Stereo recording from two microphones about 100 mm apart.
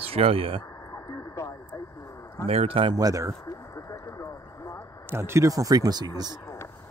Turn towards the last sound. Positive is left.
turn(degrees=-40)  # may be behind; listen again after turning